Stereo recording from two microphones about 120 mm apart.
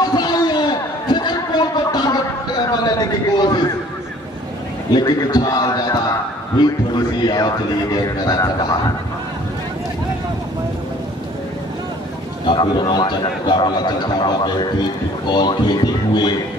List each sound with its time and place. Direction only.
0.0 s a sound: 35° left (ahead or behind)
4.9 s a man's voice: 35° left (ahead or behind)
12.4 s a man's voice: 40° left (ahead or behind)